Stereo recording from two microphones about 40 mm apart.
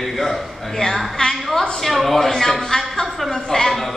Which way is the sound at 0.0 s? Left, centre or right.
Centre.